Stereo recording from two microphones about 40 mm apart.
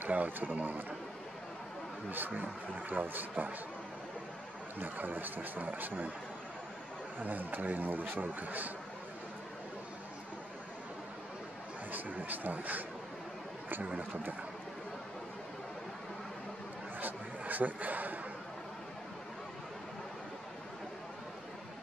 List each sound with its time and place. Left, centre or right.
0.0 s a man's voice: right
2.0 s a man's voice: right
4.7 s a man's voice: right
7.2 s a man's voice: right
11.9 s a man's voice: right
17.0 s a sound: right